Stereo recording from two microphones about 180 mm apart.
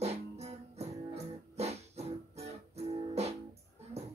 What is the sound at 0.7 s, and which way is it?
Music, 35° right (ahead or behind).